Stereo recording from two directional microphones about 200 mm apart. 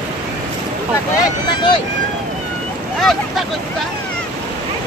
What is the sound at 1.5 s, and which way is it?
Speech, 20° left (ahead or behind).